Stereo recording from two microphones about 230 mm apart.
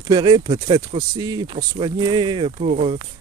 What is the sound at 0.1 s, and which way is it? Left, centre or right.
Speech, centre.